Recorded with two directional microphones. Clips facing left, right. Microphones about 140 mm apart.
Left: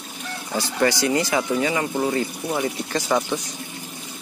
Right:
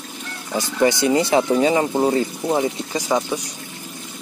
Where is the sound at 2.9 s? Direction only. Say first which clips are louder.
Left 1 dB; 10° right (ahead or behind).